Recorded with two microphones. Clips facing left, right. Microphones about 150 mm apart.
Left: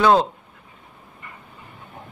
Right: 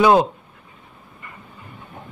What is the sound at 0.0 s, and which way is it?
Speech, 10° right (ahead or behind).